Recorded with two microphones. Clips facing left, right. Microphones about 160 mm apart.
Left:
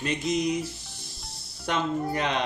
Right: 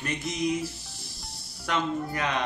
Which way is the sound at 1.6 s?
25° left (ahead or behind).